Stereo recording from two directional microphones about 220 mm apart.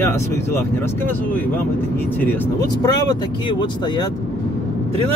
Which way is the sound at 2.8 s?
15° left (ahead or behind).